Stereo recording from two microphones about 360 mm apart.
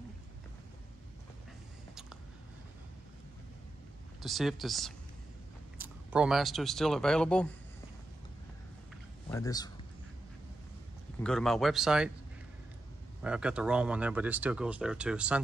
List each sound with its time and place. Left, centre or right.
4.2 s speech: centre
9.3 s a man's voice: centre
11.2 s speech: centre
13.2 s speech: centre